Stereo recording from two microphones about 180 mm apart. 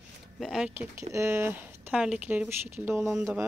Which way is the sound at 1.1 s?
15° right (ahead or behind).